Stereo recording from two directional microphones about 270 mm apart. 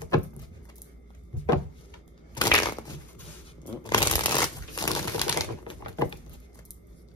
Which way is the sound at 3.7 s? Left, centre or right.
Centre.